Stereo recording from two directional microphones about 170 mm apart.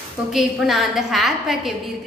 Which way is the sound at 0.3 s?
Centre (ahead or behind).